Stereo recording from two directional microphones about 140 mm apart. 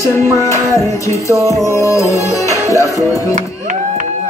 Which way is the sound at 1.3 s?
20° right (ahead or behind).